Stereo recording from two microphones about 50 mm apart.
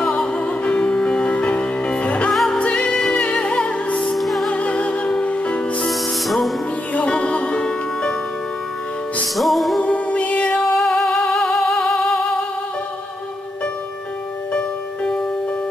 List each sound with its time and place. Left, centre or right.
0.0 s music: centre
2.3 s music: centre
2.6 s music: centre
4.1 s music: centre
4.5 s music: left
5.9 s music: centre
6.9 s music: left
9.4 s music: centre
9.8 s music: left
10.8 s music: centre